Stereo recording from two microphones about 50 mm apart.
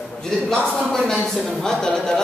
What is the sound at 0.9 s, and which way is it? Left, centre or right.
A woman's voice, centre.